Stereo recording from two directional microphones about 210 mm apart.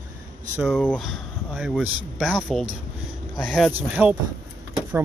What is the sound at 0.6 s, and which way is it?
Speech, 5° left (ahead or behind).